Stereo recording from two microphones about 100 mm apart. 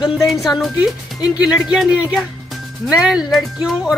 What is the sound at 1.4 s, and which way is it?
Speech, 10° right (ahead or behind).